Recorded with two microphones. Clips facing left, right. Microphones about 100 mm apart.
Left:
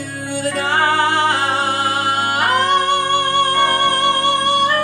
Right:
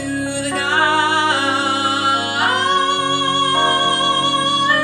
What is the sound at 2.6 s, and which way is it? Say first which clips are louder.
Music: left 1 dB; 20° right (ahead or behind).